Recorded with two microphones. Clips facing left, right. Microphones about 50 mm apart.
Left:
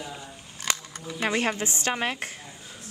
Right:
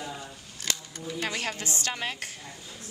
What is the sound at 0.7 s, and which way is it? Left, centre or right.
Camera, left.